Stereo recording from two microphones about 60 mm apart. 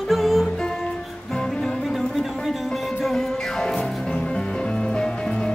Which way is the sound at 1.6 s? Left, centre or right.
Centre.